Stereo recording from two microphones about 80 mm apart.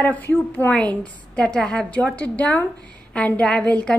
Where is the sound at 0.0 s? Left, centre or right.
Left.